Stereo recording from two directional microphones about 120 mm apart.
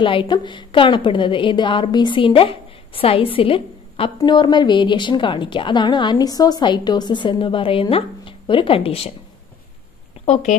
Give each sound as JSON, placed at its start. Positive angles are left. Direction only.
{"t": 0.0, "sound": "a woman's voice", "side_deg": 45}
{"t": 4.2, "sound": "a woman's voice", "side_deg": 40}
{"t": 10.2, "sound": "a woman's voice", "side_deg": 70}